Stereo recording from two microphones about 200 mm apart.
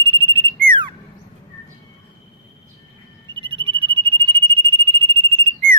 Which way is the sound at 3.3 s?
25° right (ahead or behind).